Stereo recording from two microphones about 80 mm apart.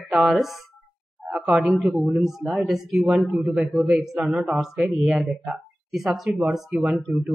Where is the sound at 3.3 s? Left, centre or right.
Centre.